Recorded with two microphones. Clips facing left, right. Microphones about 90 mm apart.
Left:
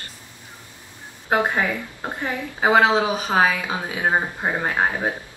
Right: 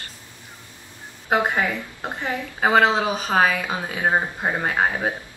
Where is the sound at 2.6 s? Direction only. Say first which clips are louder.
Left 1 dB; 10° left (ahead or behind).